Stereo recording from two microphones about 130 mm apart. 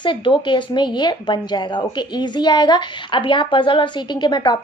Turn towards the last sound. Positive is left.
turn(degrees=35)  # may be behind; listen again after turning